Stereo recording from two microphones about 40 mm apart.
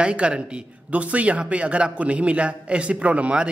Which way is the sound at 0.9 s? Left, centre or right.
Right.